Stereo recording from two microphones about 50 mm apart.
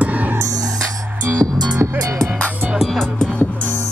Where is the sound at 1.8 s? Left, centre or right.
Right.